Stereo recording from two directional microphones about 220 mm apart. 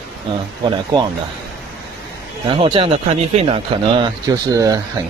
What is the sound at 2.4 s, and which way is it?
Speech, 25° right (ahead or behind).